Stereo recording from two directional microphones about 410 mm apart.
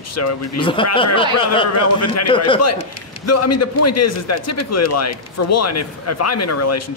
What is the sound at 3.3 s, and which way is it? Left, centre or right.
A man's voice, left.